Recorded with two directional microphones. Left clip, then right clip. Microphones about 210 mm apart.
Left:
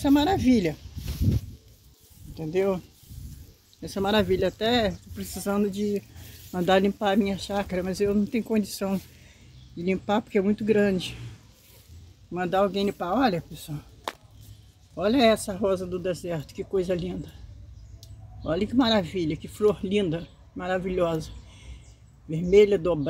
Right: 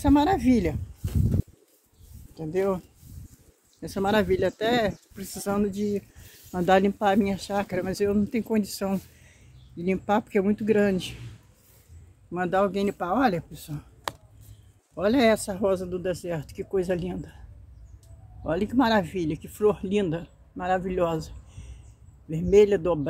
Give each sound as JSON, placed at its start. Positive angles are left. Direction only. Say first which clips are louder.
{"t": 0.0, "sound": "speech", "louder": "right 1 dB", "side_deg": 0}
{"t": 4.0, "sound": "speech", "louder": "even", "side_deg": 0}
{"t": 12.3, "sound": "speech", "louder": "even", "side_deg": -5}
{"t": 15.0, "sound": "speech", "louder": "even", "side_deg": 0}
{"t": 18.4, "sound": "speech", "louder": "even", "side_deg": 0}